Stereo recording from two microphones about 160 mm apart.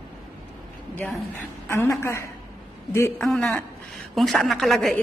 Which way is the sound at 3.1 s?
5° left (ahead or behind).